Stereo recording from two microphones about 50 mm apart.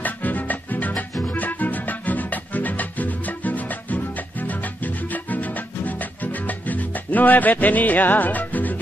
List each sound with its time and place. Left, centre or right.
0.0 s music: left